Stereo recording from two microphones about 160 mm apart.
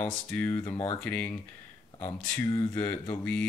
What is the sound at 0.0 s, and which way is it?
Speech, 10° left (ahead or behind).